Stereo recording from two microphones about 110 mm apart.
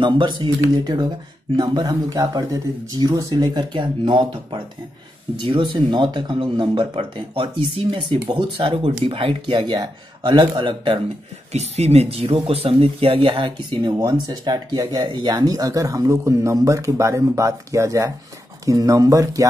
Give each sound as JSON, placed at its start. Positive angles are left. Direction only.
{"t": 0.0, "sound": "speech", "side_deg": -45}
{"t": 11.5, "sound": "speech", "side_deg": -80}